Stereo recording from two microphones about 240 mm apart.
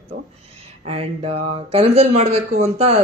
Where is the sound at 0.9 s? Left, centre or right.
Right.